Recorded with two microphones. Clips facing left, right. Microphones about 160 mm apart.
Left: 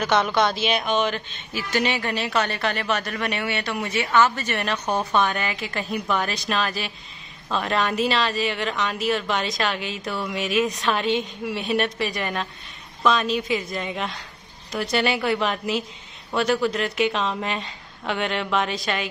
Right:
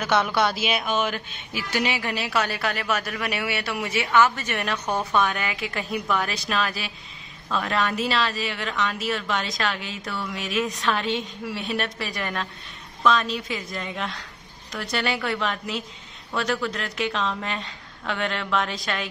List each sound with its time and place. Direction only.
0.0 s speech: 10° right (ahead or behind)
7.4 s a woman's voice: 15° left (ahead or behind)
7.7 s speech: centre (ahead or behind)
10.0 s a woman's voice: 15° left (ahead or behind)
10.3 s a woman's voice: 5° left (ahead or behind)
11.1 s a woman's voice: centre (ahead or behind)